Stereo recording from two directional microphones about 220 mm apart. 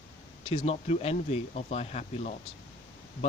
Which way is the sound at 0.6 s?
30° left (ahead or behind).